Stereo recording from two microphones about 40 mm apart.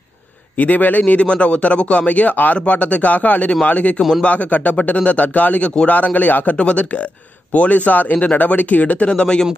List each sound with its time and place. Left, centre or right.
0.6 s a man's voice: left
6.5 s speech: left
9.1 s speech: left